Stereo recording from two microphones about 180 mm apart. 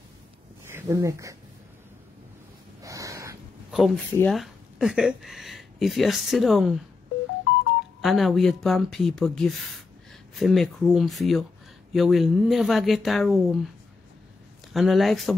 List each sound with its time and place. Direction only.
0.7 s speech: 15° right (ahead or behind)
2.8 s a sound: 20° right (ahead or behind)
3.7 s speech: centre (ahead or behind)
4.1 s speech: 10° left (ahead or behind)
4.4 s speech: 5° right (ahead or behind)
8.0 s speech: centre (ahead or behind)
14.7 s speech: centre (ahead or behind)